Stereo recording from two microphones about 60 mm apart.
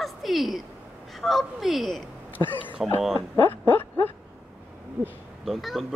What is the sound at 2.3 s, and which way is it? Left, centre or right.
Speech, left.